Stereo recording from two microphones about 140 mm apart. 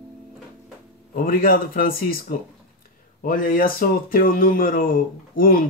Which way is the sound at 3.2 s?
90° left.